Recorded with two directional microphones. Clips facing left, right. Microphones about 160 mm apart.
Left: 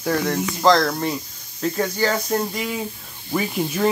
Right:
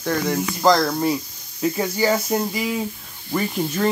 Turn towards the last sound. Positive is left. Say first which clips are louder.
# even
turn(degrees=5)  # may be behind; listen again after turning